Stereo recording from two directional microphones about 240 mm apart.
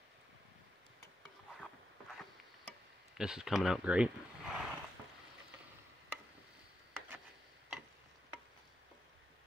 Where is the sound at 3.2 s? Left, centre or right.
Centre.